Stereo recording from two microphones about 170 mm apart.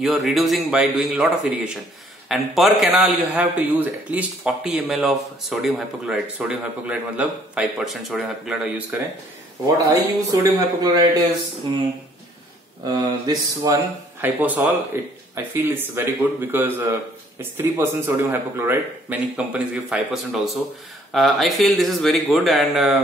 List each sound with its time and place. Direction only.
0.0 s a man's voice: centre (ahead or behind)
9.8 s speech: 20° right (ahead or behind)
12.8 s speech: 20° right (ahead or behind)
14.2 s a man's voice: 10° right (ahead or behind)